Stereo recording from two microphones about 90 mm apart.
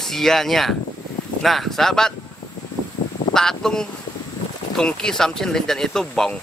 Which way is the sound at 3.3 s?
5° left (ahead or behind).